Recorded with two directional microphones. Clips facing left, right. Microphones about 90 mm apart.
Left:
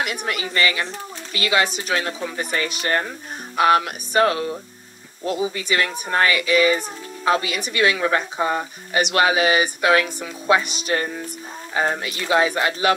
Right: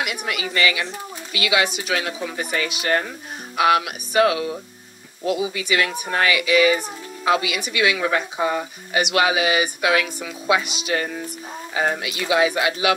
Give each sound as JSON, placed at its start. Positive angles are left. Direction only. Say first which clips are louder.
{"t": 0.0, "sound": "a woman's voice", "louder": "left 1 dB", "side_deg": 40}